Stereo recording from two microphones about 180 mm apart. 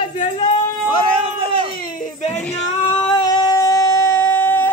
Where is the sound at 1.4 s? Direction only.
55° left (ahead or behind).